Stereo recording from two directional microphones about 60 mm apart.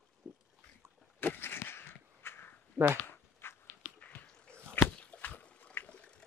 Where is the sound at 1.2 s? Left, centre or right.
Left.